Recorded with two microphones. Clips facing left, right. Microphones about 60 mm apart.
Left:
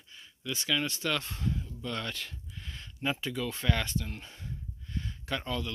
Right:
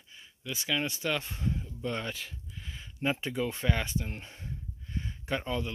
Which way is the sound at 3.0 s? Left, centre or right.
Right.